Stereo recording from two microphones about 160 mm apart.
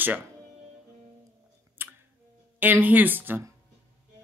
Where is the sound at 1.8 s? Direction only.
15° right (ahead or behind).